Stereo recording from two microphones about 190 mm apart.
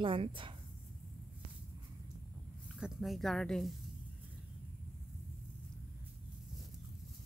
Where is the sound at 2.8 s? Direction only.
Centre (ahead or behind).